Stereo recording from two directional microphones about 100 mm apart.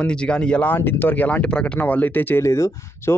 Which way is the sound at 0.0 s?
10° left (ahead or behind).